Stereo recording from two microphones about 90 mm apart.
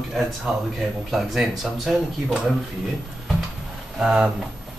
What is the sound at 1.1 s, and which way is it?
Speech, centre (ahead or behind).